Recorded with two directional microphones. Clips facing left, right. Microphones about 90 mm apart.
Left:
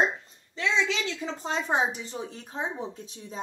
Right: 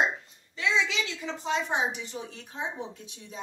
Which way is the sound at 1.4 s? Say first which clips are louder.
Left 1 dB; 40° left (ahead or behind).